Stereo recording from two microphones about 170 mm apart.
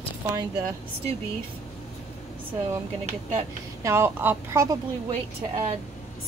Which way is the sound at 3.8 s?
15° right (ahead or behind).